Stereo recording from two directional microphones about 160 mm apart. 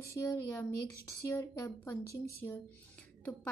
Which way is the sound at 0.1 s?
20° left (ahead or behind).